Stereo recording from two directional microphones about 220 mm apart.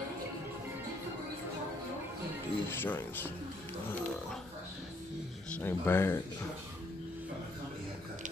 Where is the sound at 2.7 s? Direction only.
10° left (ahead or behind).